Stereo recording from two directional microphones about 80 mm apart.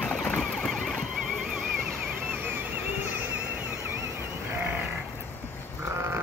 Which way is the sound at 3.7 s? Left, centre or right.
Right.